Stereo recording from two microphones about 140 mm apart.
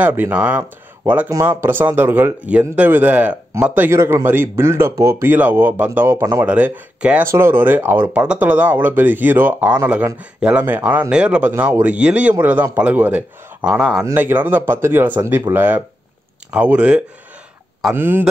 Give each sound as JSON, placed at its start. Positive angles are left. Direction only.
{"t": 0.0, "sound": "speech", "side_deg": -15}